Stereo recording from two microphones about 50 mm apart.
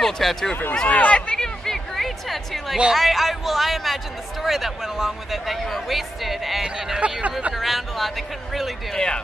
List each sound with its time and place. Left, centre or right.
0.0 s speech: centre
0.8 s speech: left
1.4 s a sound: centre
2.9 s speech: centre
6.6 s speech: centre
7.5 s speech: centre
8.9 s speech: centre